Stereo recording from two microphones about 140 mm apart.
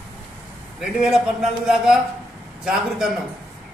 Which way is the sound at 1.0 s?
5° right (ahead or behind).